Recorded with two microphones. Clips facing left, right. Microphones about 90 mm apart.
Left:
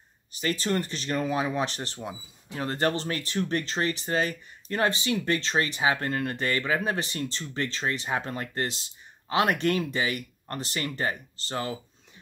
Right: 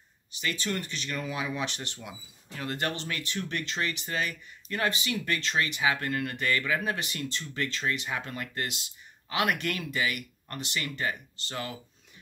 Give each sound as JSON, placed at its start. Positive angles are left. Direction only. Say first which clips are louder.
{"t": 0.3, "sound": "speech", "louder": "left 5 dB", "side_deg": 40}